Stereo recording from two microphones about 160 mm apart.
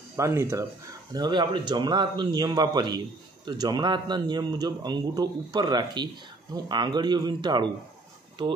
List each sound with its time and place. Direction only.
0.1 s speech: 15° right (ahead or behind)
1.1 s a man's voice: 25° right (ahead or behind)